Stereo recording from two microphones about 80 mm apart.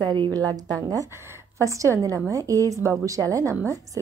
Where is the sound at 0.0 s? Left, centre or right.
Right.